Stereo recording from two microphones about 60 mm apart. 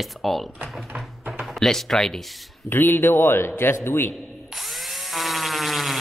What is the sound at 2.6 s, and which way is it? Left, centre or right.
A man's voice, left.